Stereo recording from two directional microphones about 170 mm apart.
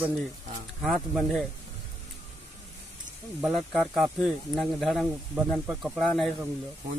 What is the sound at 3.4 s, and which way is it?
Speech, centre (ahead or behind).